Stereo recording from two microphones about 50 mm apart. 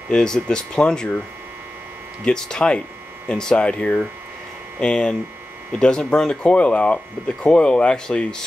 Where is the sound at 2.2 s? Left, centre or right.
Centre.